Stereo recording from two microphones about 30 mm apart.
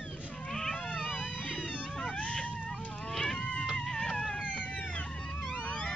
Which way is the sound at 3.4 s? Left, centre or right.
Left.